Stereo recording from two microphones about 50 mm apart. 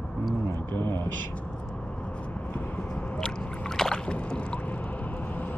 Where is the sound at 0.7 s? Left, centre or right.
Left.